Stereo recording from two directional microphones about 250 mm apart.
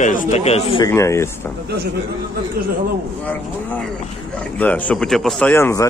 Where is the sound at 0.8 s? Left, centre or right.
Centre.